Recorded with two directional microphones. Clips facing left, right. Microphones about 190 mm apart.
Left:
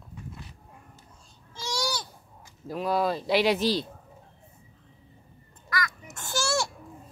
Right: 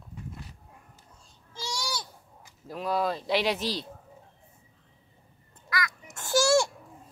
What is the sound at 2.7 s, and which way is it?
Speech, 5° left (ahead or behind).